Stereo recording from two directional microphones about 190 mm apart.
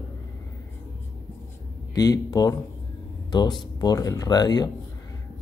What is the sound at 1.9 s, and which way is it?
Speech, 20° left (ahead or behind).